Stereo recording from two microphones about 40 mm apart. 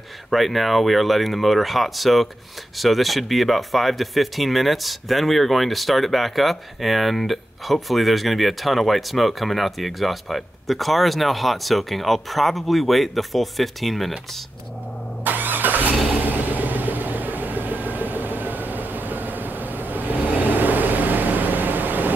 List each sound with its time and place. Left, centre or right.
0.3 s speech: centre
15.2 s vehicle: right